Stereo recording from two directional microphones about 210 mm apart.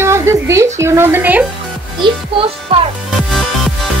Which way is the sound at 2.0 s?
25° right (ahead or behind).